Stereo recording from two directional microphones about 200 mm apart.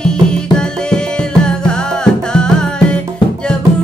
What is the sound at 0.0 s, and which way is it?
Music, 5° left (ahead or behind).